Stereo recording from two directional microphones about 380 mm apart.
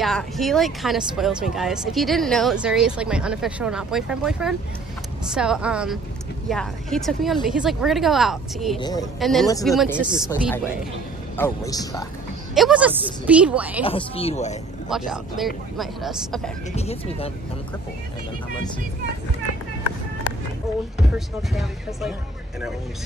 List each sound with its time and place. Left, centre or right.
0.0 s speech: centre
8.7 s speech: centre
9.2 s speech: centre
11.3 s speech: centre
12.5 s speech: centre
13.8 s speech: centre
14.9 s speech: centre
16.7 s speech: centre
21.4 s speech: centre